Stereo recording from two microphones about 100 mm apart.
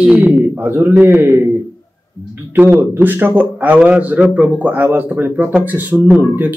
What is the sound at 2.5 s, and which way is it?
Speech, 20° right (ahead or behind).